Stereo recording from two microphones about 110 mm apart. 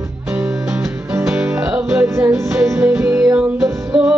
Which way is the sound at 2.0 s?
25° right (ahead or behind).